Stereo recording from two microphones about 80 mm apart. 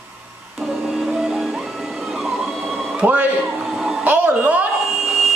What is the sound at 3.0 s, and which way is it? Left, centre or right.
Speech, right.